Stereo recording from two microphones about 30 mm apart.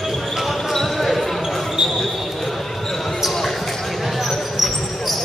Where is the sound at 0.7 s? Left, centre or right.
Centre.